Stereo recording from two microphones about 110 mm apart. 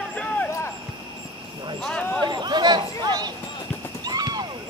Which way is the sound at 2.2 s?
40° right (ahead or behind).